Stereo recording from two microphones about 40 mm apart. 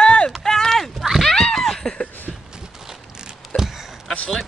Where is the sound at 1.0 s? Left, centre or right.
Centre.